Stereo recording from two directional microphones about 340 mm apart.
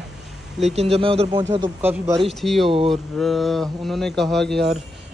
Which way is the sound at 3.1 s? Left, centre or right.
Centre.